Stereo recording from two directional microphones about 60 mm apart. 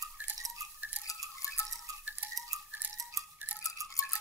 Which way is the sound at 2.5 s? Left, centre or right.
Right.